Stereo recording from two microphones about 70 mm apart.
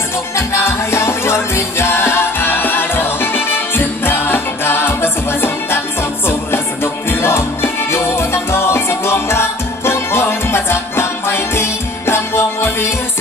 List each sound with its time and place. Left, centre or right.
0.4 s music: left